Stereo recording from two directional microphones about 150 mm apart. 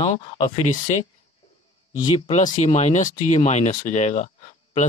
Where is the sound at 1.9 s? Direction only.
30° left (ahead or behind).